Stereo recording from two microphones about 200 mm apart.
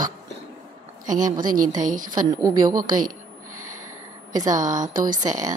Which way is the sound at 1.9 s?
40° right (ahead or behind).